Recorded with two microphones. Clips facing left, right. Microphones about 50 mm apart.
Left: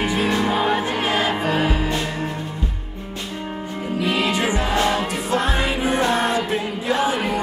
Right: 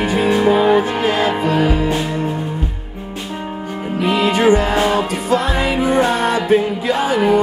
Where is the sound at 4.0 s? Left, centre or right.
Right.